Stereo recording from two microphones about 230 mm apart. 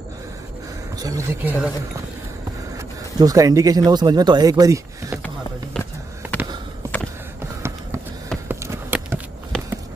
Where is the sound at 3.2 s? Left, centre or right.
Centre.